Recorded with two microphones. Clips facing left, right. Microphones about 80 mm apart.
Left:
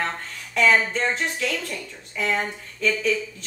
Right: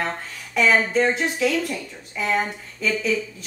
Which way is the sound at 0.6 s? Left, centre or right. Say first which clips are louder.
Right 1 dB; centre.